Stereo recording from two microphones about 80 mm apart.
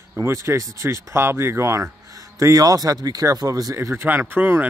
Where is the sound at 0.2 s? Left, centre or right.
Right.